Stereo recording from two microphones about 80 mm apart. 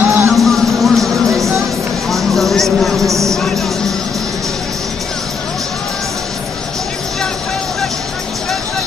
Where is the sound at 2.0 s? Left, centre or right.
Centre.